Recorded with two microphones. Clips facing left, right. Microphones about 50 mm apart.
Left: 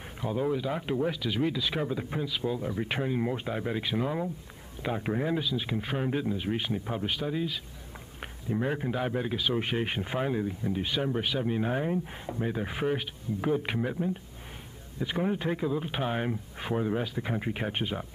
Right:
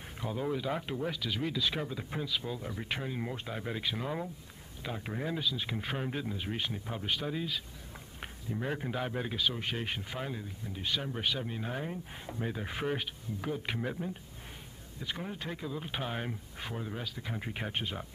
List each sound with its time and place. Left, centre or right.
0.2 s speech: centre
4.8 s speech: left; by 7.6 s centre
8.5 s speech: centre
9.6 s speech: centre
13.4 s speech: centre
15.0 s speech: left